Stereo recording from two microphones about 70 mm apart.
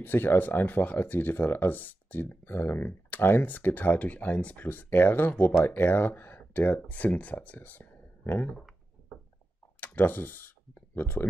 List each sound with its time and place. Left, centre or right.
0.0 s speech: left
9.8 s speech: left